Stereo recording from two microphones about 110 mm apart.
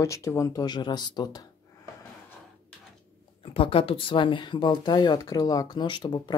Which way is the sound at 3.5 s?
55° left (ahead or behind).